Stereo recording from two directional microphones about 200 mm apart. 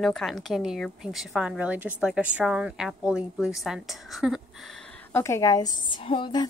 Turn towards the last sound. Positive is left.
turn(degrees=25)  # may be behind; listen again after turning